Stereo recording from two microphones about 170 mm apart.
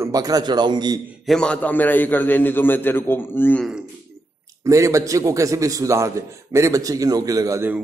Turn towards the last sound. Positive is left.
turn(degrees=-15)  # may be behind; listen again after turning